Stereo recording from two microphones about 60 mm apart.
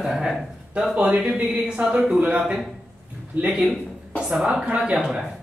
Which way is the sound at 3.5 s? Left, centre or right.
Centre.